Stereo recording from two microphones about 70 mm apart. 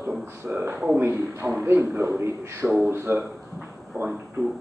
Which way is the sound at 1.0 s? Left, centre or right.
Right.